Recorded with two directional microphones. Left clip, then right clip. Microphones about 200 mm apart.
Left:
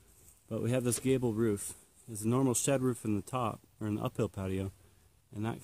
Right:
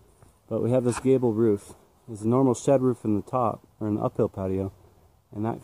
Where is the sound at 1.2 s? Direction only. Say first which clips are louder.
Right 9 dB; 25° left (ahead or behind).